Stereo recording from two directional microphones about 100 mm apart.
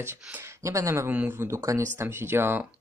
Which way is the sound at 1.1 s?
20° right (ahead or behind).